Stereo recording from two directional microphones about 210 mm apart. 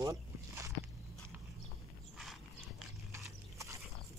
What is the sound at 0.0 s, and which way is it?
Walk, 15° right (ahead or behind).